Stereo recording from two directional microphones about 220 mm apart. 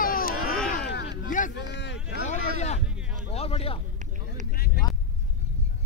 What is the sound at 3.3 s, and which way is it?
Speech, 25° left (ahead or behind).